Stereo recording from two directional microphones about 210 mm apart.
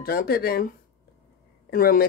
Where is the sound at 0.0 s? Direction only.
45° left (ahead or behind).